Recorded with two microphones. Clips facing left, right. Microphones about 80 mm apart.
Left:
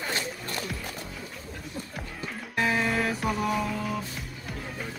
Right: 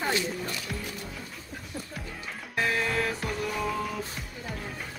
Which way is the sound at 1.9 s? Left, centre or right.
Centre.